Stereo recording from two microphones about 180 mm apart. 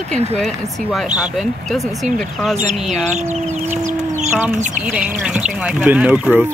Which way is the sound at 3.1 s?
40° right (ahead or behind).